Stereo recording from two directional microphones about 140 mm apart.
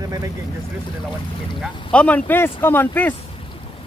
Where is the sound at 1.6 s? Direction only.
10° left (ahead or behind).